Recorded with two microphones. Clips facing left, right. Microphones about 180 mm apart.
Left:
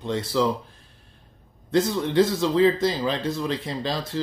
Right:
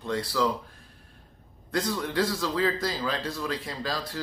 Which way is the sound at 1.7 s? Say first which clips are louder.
Left 7 dB; 25° left (ahead or behind).